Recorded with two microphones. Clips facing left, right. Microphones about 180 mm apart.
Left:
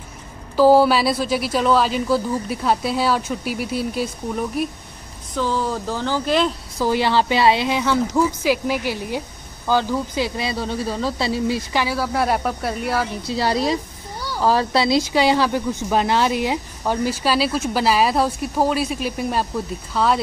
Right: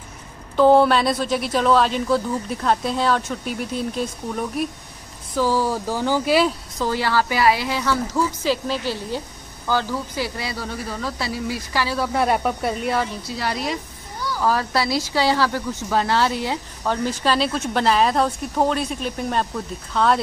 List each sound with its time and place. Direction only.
0.6 s speech: 5° left (ahead or behind)
5.3 s speech: 10° right (ahead or behind)
6.8 s a woman's voice: 20° left (ahead or behind)
12.0 s speech: centre (ahead or behind)
13.1 s speech: 30° left (ahead or behind); by 20.2 s 5° left (ahead or behind)